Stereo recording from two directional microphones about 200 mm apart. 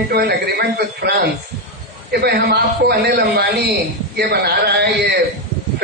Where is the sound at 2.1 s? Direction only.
55° right (ahead or behind).